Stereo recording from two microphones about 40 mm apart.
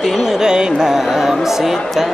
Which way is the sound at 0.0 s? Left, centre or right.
Centre.